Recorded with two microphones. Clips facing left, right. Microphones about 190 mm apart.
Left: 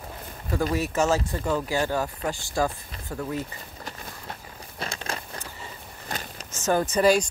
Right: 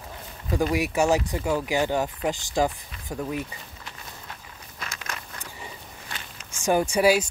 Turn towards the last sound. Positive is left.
turn(degrees=-5)  # may be behind; listen again after turning